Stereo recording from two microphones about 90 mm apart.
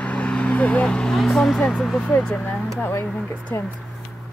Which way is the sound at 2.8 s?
20° left (ahead or behind).